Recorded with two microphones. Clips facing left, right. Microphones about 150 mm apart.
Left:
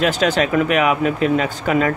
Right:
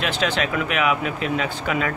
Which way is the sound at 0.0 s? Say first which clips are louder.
Left 6 dB; 45° left (ahead or behind).